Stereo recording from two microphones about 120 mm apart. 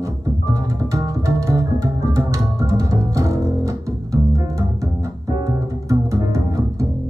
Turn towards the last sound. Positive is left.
turn(degrees=-25)  # may be behind; listen again after turning